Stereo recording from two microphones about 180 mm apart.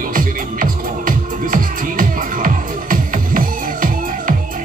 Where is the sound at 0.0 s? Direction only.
50° right (ahead or behind).